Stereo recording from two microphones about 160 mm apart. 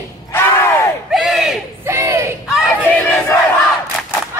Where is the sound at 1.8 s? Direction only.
20° right (ahead or behind).